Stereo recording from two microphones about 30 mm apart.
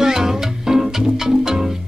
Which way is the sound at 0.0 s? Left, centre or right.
Centre.